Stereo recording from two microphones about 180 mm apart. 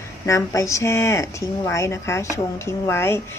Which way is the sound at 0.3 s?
15° left (ahead or behind).